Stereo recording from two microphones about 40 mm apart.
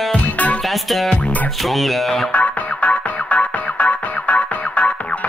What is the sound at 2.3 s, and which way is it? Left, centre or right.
Music, left.